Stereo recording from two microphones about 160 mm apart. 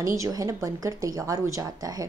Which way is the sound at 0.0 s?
20° right (ahead or behind).